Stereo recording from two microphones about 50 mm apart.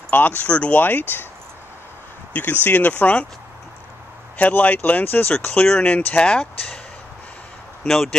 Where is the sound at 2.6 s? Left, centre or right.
Left.